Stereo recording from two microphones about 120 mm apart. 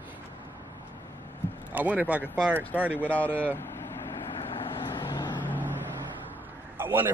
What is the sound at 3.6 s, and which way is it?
Vehicle, 20° left (ahead or behind).